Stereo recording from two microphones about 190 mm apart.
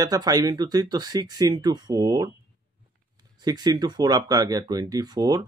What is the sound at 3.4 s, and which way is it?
Speech, 20° right (ahead or behind).